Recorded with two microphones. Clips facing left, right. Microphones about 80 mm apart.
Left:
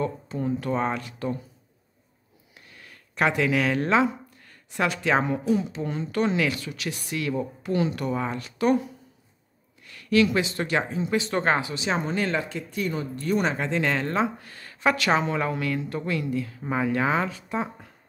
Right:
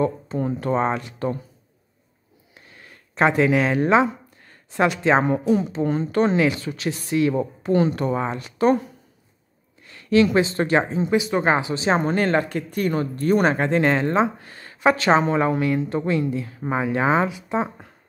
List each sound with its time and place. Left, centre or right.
0.0 s speech: right
2.7 s a sound: right
5.0 s speech: right
9.8 s speech: right
11.1 s speech: centre
11.7 s speech: right
13.9 s speech: right